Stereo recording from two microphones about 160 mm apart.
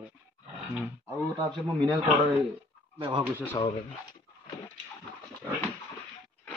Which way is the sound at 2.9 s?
30° right (ahead or behind).